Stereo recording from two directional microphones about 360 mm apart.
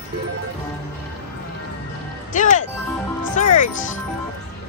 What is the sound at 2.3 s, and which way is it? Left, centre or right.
Speech, left.